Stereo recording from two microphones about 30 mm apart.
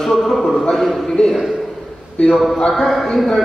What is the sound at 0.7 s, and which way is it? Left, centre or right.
Speech, centre.